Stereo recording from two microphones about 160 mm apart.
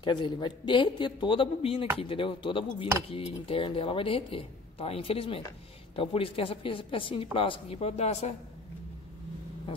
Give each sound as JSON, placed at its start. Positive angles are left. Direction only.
{"t": 0.0, "sound": "speech", "side_deg": 30}